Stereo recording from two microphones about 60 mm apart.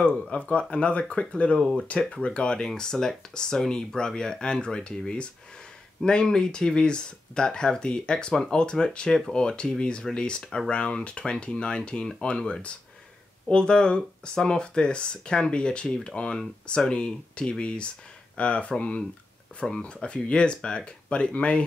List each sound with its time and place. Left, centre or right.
0.2 s speech: centre